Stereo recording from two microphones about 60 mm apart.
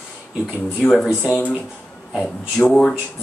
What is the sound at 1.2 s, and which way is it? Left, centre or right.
Speech, left.